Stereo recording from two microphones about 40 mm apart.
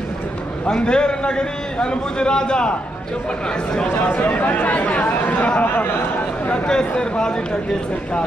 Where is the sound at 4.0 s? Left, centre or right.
Left.